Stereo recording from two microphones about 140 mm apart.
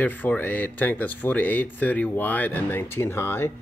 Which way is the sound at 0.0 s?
10° left (ahead or behind).